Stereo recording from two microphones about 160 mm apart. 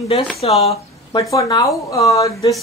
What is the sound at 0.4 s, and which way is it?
Speech, 40° left (ahead or behind).